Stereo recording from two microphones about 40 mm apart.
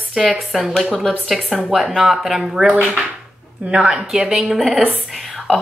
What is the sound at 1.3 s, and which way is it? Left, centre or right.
Speech, centre.